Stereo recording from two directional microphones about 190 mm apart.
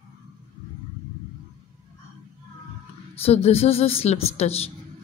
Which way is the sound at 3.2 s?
30° left (ahead or behind).